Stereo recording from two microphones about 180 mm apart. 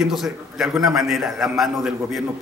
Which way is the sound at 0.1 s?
Centre (ahead or behind).